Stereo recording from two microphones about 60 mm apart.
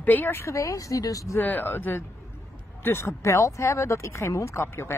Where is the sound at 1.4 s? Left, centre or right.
Left.